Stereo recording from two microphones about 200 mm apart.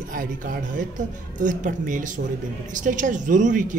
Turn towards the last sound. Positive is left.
turn(degrees=-40)  # may be behind; listen again after turning